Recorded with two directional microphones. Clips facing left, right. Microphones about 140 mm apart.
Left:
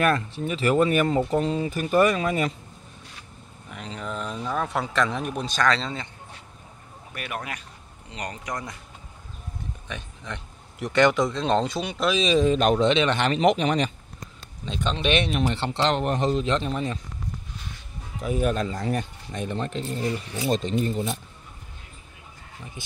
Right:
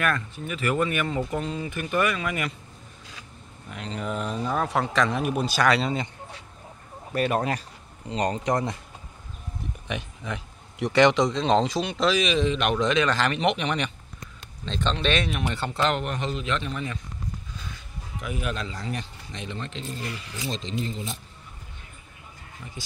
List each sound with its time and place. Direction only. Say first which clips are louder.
0.0 s speech: left 5 dB; 30° left (ahead or behind)
3.7 s speech: right 2 dB; centre (ahead or behind)
7.1 s speech: right 9 dB; 35° right (ahead or behind)
9.8 s speech: right 6 dB; 10° right (ahead or behind)
12.2 s speech: left 3 dB; 40° left (ahead or behind)
14.6 s speech: even; 10° left (ahead or behind)
15.2 s speech: left 3 dB; 30° left (ahead or behind)
18.2 s speech: left 7 dB; 40° left (ahead or behind); by 21.2 s 55° left (ahead or behind)